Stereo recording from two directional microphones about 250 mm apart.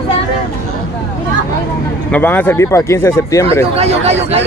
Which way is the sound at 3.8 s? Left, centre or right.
Right.